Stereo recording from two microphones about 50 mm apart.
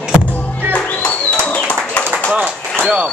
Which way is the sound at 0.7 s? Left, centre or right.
Left.